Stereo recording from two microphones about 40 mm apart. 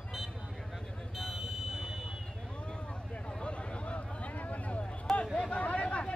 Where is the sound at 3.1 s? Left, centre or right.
Left.